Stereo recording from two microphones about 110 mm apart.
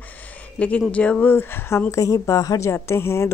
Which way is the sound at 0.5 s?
15° left (ahead or behind).